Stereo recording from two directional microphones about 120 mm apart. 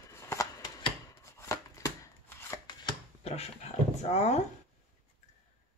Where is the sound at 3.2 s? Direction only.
60° left (ahead or behind).